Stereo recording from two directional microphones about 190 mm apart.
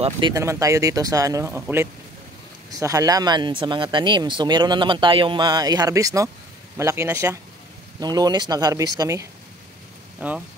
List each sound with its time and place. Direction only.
0.3 s speech: 15° right (ahead or behind)